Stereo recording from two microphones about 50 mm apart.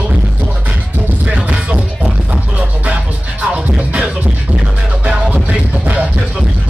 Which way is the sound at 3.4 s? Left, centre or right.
Right.